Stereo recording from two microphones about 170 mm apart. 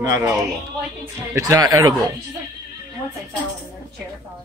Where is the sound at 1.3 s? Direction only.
20° right (ahead or behind).